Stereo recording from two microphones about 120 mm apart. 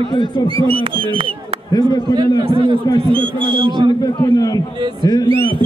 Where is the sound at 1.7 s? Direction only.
35° left (ahead or behind).